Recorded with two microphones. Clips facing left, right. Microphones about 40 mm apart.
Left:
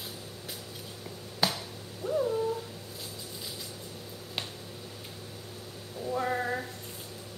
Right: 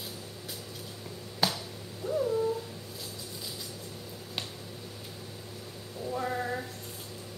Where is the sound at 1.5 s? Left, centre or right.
Centre.